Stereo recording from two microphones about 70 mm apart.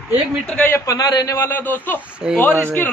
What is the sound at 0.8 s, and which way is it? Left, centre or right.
Speech, left.